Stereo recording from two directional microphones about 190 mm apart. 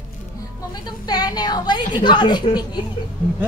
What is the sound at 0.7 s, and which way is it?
A woman's voice, 20° left (ahead or behind).